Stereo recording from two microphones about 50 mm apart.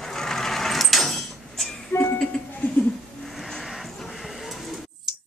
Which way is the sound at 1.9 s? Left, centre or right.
Left.